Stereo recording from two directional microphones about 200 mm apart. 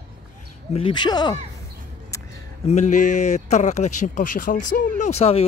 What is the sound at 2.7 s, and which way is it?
Speech, 35° left (ahead or behind).